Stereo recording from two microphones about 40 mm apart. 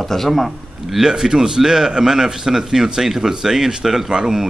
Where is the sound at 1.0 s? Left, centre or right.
Centre.